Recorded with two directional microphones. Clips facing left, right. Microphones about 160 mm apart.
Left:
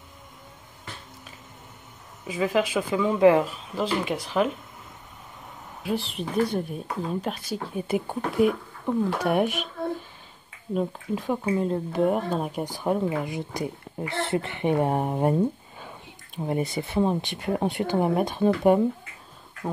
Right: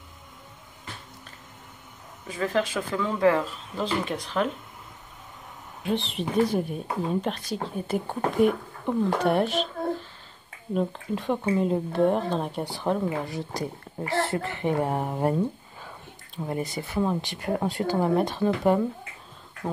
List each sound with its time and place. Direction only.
2.2 s speech: 10° left (ahead or behind)
5.9 s speech: centre (ahead or behind); by 15.3 s 20° left (ahead or behind)
16.3 s speech: 20° left (ahead or behind)
19.6 s speech: 5° left (ahead or behind)